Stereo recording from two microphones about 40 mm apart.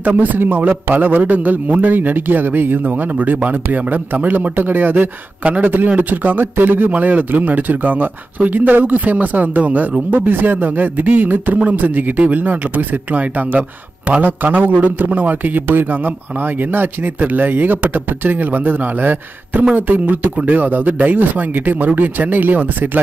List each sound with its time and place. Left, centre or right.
0.0 s a man's voice: right
5.4 s a man's voice: right
6.4 s speech: right
6.9 s a man's voice: right
15.6 s a man's voice: right